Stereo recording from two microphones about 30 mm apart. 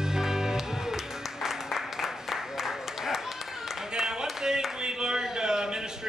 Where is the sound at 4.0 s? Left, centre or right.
Centre.